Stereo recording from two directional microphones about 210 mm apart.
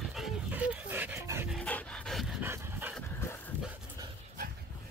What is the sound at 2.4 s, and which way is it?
Dog, 10° right (ahead or behind).